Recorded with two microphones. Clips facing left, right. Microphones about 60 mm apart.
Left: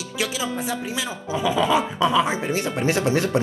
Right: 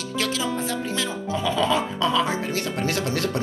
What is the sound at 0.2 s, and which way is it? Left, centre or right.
Music, centre.